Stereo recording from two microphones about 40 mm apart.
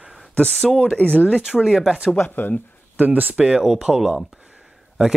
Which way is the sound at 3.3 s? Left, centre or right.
Right.